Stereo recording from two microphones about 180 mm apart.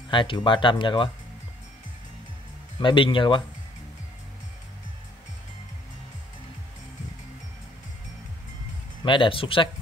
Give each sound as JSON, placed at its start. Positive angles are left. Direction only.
{"t": 0.1, "sound": "speech", "side_deg": 25}
{"t": 2.8, "sound": "speech", "side_deg": 25}
{"t": 9.0, "sound": "speech", "side_deg": 25}